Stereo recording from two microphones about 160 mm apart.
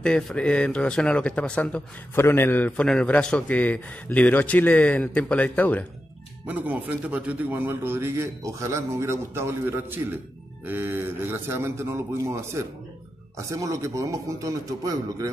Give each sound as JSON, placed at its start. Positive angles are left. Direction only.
{"t": 0.0, "sound": "speech", "side_deg": 5}
{"t": 6.4, "sound": "a man's voice", "side_deg": -10}